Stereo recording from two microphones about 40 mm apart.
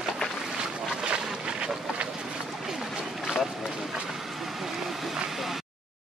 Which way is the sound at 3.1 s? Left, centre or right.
Centre.